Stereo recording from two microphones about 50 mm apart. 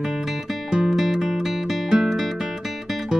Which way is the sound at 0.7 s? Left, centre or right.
Centre.